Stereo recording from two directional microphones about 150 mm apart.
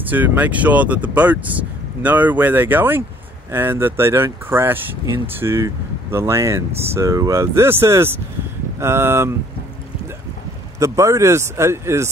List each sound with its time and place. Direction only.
0.1 s speech: 10° right (ahead or behind)
10.8 s speech: 20° right (ahead or behind)